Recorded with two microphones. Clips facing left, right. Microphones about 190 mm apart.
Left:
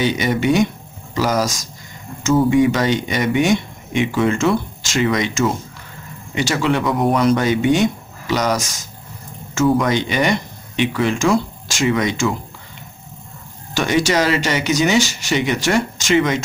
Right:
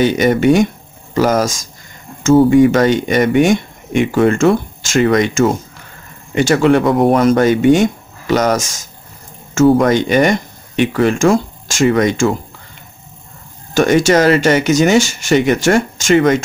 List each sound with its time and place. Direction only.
0.0 s speech: 50° right (ahead or behind)
2.5 s speech: 50° right (ahead or behind)
9.8 s speech: 50° right (ahead or behind)
13.7 s speech: 50° right (ahead or behind)